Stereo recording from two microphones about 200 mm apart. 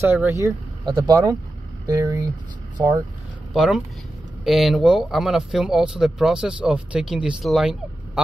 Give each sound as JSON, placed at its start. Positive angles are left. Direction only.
{"t": 0.0, "sound": "speech", "side_deg": -10}
{"t": 3.5, "sound": "speech", "side_deg": 0}